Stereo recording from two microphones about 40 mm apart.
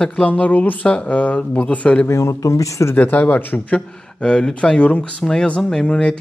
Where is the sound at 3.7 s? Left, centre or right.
Left.